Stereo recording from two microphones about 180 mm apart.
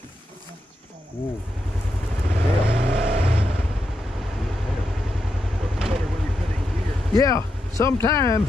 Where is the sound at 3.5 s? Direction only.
Centre (ahead or behind).